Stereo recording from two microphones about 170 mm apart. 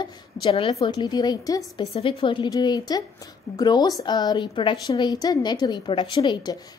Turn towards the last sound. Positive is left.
turn(degrees=25)  # may be behind; listen again after turning